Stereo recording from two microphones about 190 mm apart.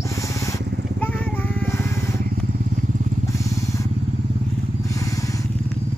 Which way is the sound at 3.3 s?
15° left (ahead or behind).